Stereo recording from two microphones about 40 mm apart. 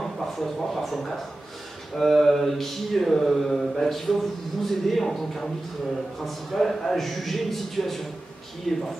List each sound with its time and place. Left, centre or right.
0.0 s speech: centre
2.0 s mantra: centre
8.7 s speech: centre